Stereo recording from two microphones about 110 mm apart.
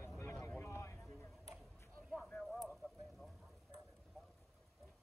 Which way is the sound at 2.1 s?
5° left (ahead or behind).